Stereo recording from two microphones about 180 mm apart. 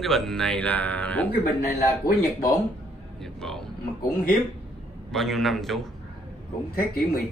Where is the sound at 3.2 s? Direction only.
Centre (ahead or behind).